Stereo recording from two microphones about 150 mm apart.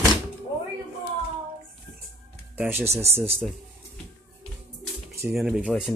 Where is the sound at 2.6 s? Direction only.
15° right (ahead or behind).